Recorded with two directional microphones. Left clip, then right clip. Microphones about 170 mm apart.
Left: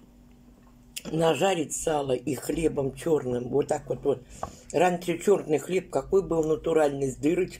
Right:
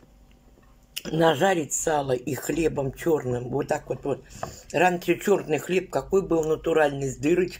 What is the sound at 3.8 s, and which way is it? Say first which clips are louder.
Speech: left 2 dB; centre (ahead or behind).